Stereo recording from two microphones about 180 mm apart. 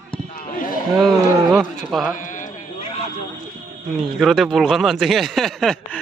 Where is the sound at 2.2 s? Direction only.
45° left (ahead or behind).